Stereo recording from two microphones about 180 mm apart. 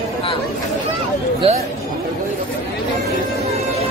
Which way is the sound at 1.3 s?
35° right (ahead or behind).